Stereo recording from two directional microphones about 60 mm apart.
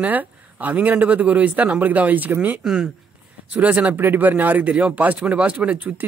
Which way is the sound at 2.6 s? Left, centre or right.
Centre.